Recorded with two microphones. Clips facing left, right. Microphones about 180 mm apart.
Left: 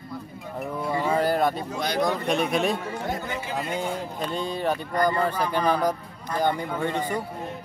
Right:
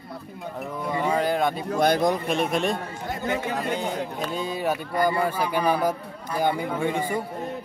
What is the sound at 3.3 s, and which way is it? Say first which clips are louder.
Speech: right 5 dB; 65° right (ahead or behind).